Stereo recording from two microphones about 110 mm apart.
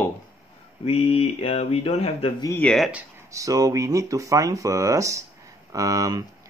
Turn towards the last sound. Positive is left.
turn(degrees=-30)  # may be behind; listen again after turning